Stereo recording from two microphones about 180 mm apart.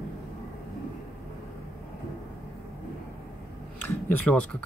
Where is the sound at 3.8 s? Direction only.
10° left (ahead or behind).